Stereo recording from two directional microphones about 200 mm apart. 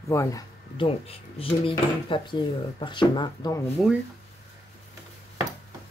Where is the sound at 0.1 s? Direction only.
15° left (ahead or behind).